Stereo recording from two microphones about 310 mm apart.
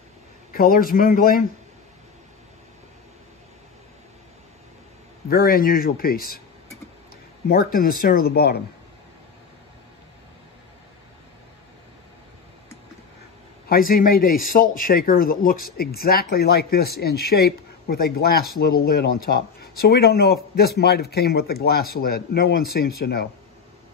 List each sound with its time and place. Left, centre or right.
0.5 s a man's voice: left
5.3 s a man's voice: left
7.4 s a man's voice: left
13.7 s a man's voice: left